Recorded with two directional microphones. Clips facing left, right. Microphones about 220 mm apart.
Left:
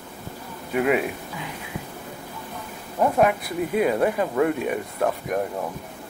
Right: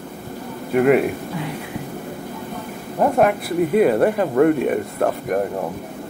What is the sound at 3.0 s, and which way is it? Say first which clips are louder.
Speech: right 3 dB; 50° right (ahead or behind).